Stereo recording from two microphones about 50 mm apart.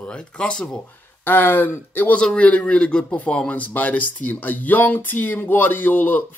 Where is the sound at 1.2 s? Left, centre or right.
Left.